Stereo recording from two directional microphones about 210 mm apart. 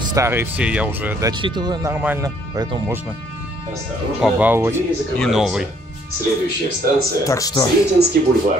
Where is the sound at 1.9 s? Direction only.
10° right (ahead or behind).